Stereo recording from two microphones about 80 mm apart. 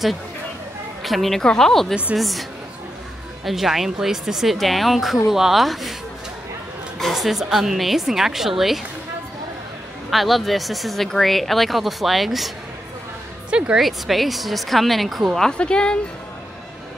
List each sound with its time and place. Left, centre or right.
1.0 s speech: centre
3.4 s speech: centre
7.0 s speech: centre
10.1 s speech: centre
13.5 s speech: centre
13.8 s speech: centre